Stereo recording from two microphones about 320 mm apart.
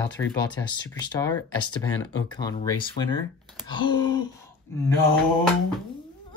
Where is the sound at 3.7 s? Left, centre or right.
Centre.